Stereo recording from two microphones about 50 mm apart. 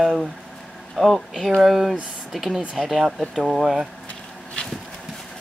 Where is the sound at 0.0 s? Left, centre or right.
Centre.